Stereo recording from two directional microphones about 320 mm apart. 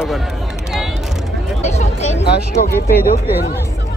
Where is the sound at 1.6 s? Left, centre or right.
Left.